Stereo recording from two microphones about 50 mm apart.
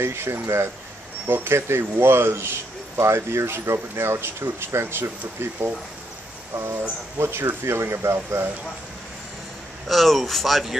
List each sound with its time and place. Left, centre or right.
0.0 s speech: right
1.2 s speech: right
9.8 s speech: centre